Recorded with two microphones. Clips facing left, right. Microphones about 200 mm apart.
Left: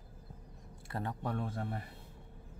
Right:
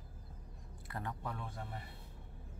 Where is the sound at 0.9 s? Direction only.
35° left (ahead or behind).